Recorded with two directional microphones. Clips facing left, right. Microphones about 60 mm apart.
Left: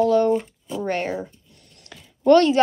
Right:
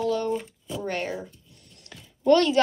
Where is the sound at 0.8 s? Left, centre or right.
Left.